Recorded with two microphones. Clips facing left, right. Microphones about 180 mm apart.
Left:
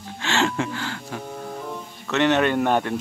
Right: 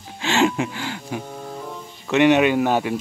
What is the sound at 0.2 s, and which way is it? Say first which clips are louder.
Music: right 4 dB; 15° right (ahead or behind).